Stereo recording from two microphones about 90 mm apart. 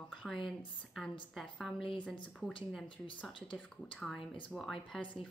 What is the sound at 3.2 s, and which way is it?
Speech, 10° left (ahead or behind).